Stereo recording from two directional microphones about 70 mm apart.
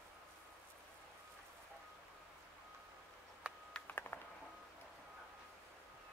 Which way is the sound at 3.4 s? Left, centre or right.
Centre.